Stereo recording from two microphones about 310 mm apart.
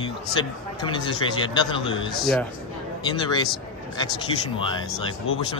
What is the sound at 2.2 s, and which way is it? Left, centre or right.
Speech, centre.